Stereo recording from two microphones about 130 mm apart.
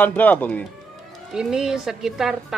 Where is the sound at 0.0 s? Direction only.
10° left (ahead or behind).